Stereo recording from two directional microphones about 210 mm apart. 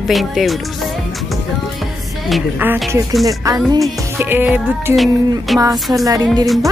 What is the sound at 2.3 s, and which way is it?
Music, 5° right (ahead or behind).